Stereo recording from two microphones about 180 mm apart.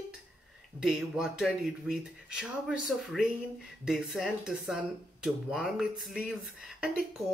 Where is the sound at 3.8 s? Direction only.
Centre (ahead or behind).